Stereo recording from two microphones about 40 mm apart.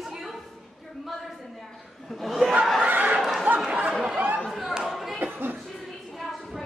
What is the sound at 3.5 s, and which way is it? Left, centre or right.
Chatter, right.